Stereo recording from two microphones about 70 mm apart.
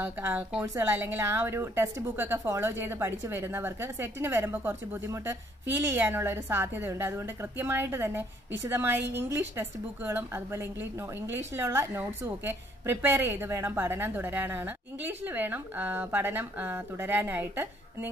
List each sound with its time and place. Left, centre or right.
0.0 s a woman's voice: right
0.7 s a woman's voice: right